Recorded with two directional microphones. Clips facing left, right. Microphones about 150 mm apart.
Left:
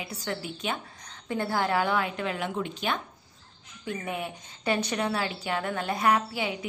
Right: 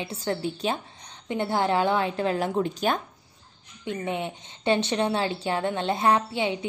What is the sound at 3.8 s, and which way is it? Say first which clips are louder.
Speech: right 4 dB; 25° right (ahead or behind).